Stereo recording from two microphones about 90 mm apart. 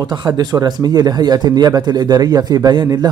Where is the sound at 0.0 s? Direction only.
50° right (ahead or behind).